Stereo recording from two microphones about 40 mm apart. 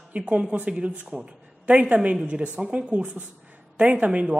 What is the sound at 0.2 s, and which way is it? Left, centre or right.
A woman's voice, right.